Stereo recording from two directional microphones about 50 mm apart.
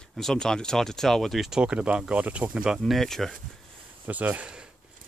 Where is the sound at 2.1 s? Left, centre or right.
Right.